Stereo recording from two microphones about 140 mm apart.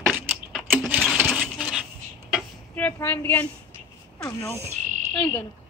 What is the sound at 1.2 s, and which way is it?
Sewing machine, centre (ahead or behind).